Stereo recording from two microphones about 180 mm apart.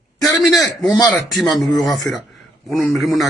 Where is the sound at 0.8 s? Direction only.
5° left (ahead or behind).